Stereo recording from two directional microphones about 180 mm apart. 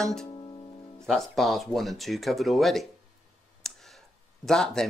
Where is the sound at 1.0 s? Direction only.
Centre (ahead or behind).